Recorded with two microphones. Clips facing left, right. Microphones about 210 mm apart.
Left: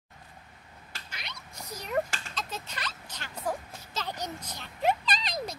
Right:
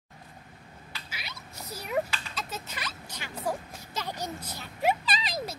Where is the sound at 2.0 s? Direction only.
45° left (ahead or behind).